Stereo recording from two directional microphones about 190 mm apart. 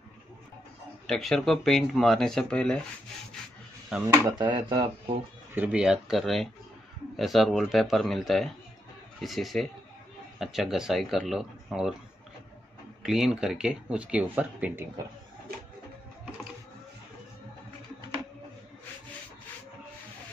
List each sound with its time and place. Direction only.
1.0 s speech: centre (ahead or behind)
4.1 s speech: 25° right (ahead or behind)
5.5 s speech: 5° right (ahead or behind)
13.0 s speech: centre (ahead or behind)